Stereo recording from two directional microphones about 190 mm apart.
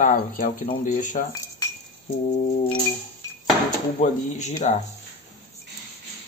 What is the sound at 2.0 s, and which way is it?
Cutlery, 40° left (ahead or behind).